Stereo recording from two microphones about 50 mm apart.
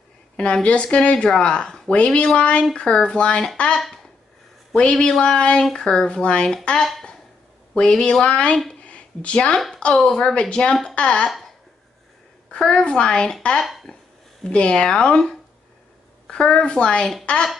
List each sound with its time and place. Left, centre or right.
0.4 s speech: left
4.9 s speech: centre
6.8 s speech: centre
8.8 s a sound: left
9.9 s speech: centre
11.2 s speech: centre
12.4 s speech: centre
13.6 s speech: centre
14.4 s speech: left